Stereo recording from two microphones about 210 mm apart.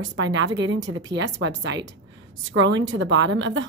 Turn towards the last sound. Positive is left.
turn(degrees=-65)  # may be behind; listen again after turning